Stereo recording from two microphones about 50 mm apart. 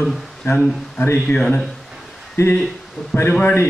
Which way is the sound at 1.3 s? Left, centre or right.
Left.